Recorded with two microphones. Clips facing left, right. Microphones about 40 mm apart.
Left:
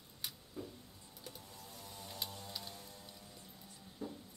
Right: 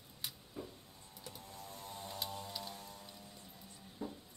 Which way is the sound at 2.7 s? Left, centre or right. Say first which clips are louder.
Right 3 dB; right.